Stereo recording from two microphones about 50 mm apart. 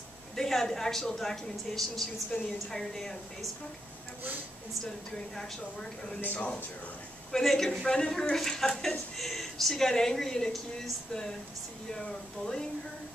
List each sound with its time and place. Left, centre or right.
0.4 s a woman's voice: centre
5.3 s a woman's voice: centre
6.2 s a man's voice: left
7.3 s a woman's voice: centre
11.9 s a woman's voice: centre